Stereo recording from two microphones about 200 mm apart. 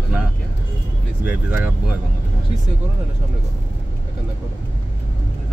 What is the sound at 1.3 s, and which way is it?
Speech, 10° right (ahead or behind).